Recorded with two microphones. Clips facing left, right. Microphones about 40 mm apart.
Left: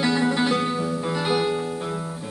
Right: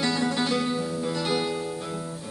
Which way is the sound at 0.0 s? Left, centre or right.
Centre.